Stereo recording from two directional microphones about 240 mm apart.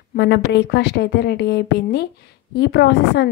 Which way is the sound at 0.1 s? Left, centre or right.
Left.